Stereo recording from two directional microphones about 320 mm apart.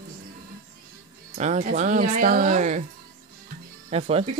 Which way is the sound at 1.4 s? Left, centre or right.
Right.